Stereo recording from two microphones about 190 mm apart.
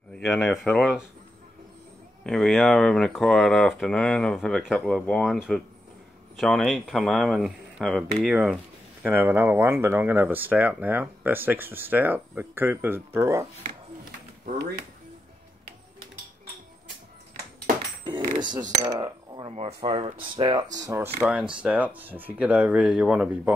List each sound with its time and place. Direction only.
0.1 s speech: centre (ahead or behind)
2.2 s speech: 5° left (ahead or behind); by 13.5 s 15° right (ahead or behind)
14.4 s speech: 55° right (ahead or behind)
18.4 s speech: 20° right (ahead or behind)
21.3 s speech: 5° right (ahead or behind)